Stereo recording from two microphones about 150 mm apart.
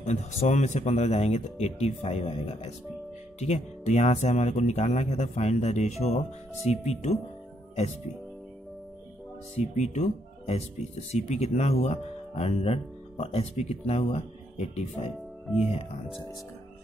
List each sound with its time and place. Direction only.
0.0 s speech: 50° left (ahead or behind)
9.6 s speech: 50° left (ahead or behind)
15.4 s speech: 5° right (ahead or behind)